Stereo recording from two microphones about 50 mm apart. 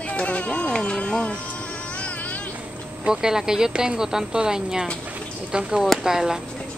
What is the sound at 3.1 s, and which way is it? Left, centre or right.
Speech, centre.